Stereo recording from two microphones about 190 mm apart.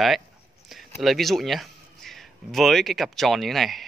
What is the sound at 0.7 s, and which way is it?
Speech, centre (ahead or behind).